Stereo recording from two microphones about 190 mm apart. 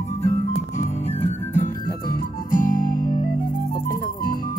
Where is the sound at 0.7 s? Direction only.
35° left (ahead or behind).